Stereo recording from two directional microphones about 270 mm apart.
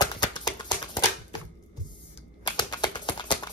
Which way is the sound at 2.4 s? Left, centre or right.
Centre.